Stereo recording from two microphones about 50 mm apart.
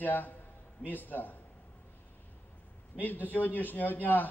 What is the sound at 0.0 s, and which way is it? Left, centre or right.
A man's voice, left.